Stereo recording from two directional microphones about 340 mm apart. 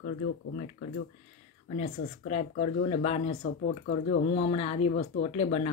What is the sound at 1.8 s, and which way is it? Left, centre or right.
Speech, centre.